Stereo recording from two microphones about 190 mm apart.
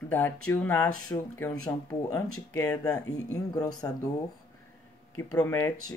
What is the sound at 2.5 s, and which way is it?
Speech, 15° left (ahead or behind).